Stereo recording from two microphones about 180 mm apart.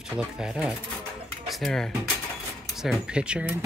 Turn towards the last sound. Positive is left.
turn(degrees=-5)  # may be behind; listen again after turning